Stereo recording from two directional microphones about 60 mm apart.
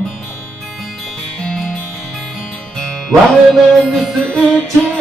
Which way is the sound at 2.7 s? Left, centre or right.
Centre.